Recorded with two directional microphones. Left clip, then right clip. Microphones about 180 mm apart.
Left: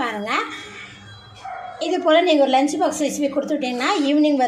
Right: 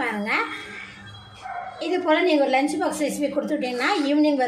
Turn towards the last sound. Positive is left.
turn(degrees=15)  # may be behind; listen again after turning